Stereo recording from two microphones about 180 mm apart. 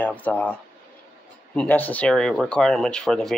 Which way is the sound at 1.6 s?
10° left (ahead or behind).